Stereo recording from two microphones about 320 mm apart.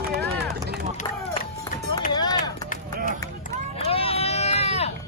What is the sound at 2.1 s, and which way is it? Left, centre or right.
Run, centre.